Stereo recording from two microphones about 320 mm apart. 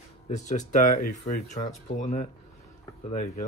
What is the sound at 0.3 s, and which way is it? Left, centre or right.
Speech, left.